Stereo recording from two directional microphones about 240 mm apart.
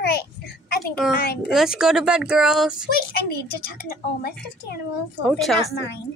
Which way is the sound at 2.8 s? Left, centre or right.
Left.